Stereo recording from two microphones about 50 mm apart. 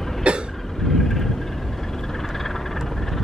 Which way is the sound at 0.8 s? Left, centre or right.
Centre.